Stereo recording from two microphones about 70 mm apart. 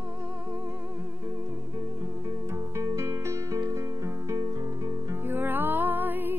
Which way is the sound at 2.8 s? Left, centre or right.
Right.